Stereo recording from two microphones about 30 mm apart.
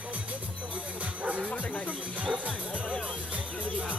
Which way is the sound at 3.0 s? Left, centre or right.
Right.